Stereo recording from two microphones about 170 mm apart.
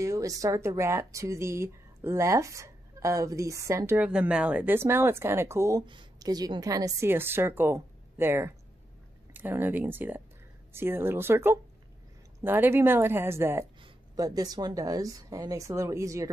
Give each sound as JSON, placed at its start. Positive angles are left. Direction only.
{"t": 0.0, "sound": "speech", "side_deg": -20}
{"t": 13.7, "sound": "speech", "side_deg": -25}